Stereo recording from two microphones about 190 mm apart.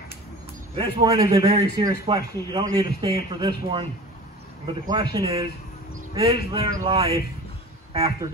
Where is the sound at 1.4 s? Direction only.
30° right (ahead or behind).